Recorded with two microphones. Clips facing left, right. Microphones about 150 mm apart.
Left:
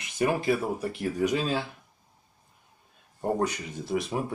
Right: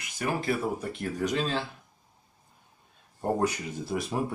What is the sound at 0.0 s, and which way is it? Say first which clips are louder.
Speech: left 4 dB; 20° left (ahead or behind).